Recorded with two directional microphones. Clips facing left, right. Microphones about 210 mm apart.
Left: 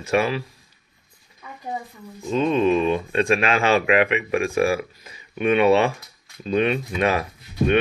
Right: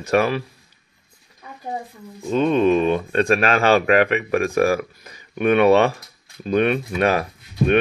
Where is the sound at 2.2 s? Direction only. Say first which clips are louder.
Right 2 dB; 50° right (ahead or behind).